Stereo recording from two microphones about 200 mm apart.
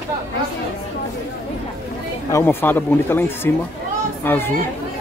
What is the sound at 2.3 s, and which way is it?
Speech, 10° left (ahead or behind).